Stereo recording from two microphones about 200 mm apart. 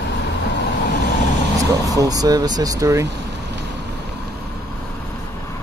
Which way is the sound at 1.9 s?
20° right (ahead or behind).